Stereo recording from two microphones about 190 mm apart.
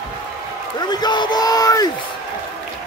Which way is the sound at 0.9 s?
20° left (ahead or behind).